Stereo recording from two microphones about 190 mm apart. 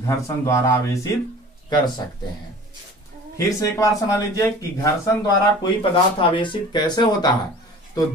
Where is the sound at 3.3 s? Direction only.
15° left (ahead or behind).